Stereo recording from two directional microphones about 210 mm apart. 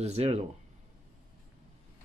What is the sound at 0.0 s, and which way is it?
Speech, 30° right (ahead or behind).